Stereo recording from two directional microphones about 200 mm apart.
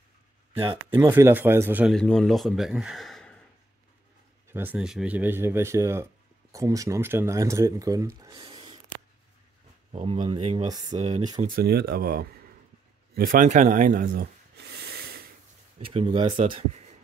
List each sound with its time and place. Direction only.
0.6 s speech: 25° right (ahead or behind)
1.0 s speech: 15° right (ahead or behind)
2.0 s speech: 5° left (ahead or behind)
4.5 s speech: 10° right (ahead or behind); by 8.7 s 25° right (ahead or behind)
9.9 s speech: 35° right (ahead or behind)
11.4 s speech: 50° right (ahead or behind)
13.1 s a sound: 45° right (ahead or behind)
15.8 s speech: 30° right (ahead or behind)